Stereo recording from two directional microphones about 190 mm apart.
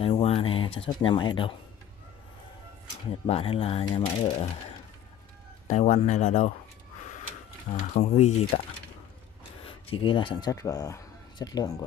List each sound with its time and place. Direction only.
0.0 s speech: 30° left (ahead or behind)
3.3 s speech: 30° left (ahead or behind)
5.7 s speech: 40° left (ahead or behind)
7.7 s speech: 35° left (ahead or behind)
9.8 s speech: 25° left (ahead or behind)